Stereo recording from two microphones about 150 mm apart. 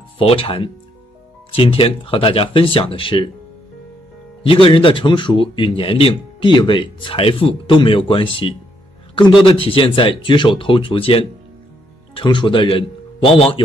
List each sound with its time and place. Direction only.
0.2 s a man's voice: 40° left (ahead or behind)
4.4 s a man's voice: 35° left (ahead or behind)